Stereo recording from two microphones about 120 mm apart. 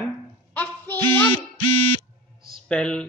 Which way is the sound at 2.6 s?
5° left (ahead or behind).